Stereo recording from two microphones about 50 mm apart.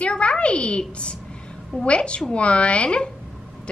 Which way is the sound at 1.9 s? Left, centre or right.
Left.